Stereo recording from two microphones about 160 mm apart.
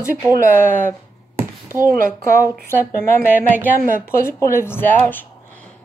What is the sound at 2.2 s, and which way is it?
Speech, 15° left (ahead or behind).